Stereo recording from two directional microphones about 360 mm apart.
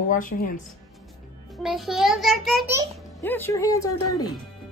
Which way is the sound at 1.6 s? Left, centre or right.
Centre.